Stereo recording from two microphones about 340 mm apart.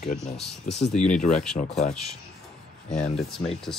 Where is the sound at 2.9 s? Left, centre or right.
Centre.